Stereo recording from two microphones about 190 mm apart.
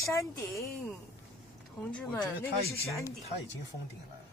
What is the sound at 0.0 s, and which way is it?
Speech, 15° left (ahead or behind).